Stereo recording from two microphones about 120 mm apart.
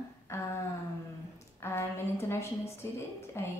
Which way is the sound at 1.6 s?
20° left (ahead or behind).